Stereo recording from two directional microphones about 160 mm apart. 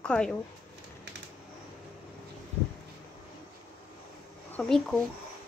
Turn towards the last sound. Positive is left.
turn(degrees=0)  # may be behind; listen again after turning